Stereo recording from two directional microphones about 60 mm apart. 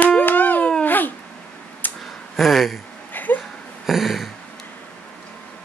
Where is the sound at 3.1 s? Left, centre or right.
Left.